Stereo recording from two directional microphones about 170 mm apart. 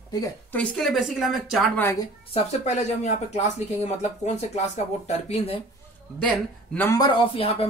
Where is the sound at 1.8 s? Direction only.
15° left (ahead or behind).